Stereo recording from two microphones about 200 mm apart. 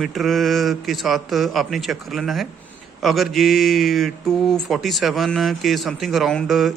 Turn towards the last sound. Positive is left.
turn(degrees=0)  # may be behind; listen again after turning